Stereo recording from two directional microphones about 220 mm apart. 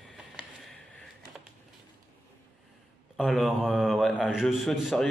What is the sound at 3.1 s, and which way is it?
A man's voice, centre (ahead or behind).